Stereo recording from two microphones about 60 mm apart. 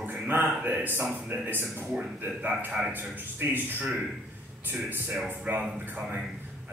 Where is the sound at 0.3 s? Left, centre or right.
Right.